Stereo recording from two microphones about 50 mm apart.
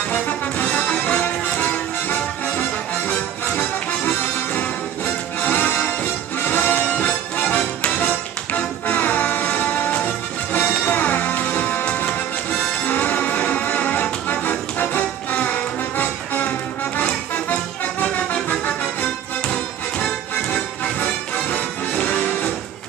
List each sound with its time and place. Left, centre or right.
0.1 s music: left
18.0 s music: left
20.5 s music: left